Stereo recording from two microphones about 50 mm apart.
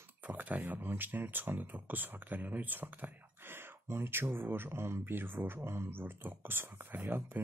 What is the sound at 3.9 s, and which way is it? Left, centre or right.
Speech, right.